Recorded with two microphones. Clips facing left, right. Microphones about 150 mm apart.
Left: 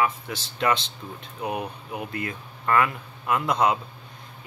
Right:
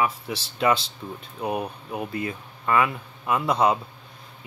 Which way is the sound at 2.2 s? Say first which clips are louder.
Right 1 dB; 10° right (ahead or behind).